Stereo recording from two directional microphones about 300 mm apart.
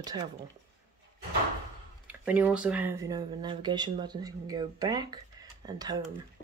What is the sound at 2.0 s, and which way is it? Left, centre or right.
Speech, centre.